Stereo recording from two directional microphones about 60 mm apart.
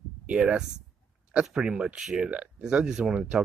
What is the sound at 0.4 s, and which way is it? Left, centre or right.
Speech, centre.